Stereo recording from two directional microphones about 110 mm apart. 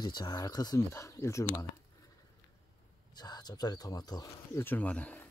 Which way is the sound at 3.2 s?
40° left (ahead or behind).